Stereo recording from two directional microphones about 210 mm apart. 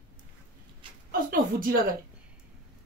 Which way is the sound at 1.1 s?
45° right (ahead or behind).